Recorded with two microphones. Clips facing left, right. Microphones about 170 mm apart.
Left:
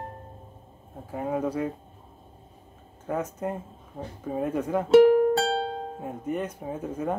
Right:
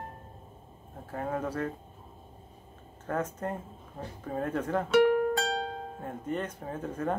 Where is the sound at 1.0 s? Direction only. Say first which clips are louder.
Left 5 dB; 10° left (ahead or behind).